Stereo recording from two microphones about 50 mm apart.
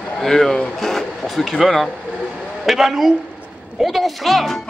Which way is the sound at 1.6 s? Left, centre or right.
Centre.